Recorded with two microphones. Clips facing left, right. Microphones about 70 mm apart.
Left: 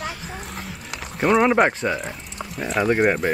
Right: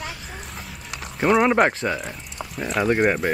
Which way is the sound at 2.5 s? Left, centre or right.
Centre.